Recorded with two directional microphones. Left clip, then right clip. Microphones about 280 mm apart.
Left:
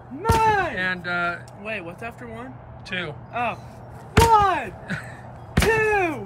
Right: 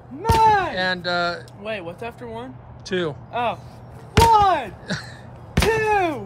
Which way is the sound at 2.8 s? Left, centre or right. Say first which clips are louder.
Right 5 dB; centre.